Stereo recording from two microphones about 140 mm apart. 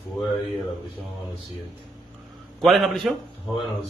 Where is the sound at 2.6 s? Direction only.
Centre (ahead or behind).